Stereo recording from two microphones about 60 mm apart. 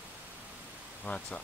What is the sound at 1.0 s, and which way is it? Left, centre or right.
Speech, centre.